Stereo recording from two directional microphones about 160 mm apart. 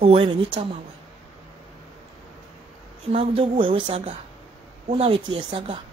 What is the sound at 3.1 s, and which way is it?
Speech, 35° right (ahead or behind).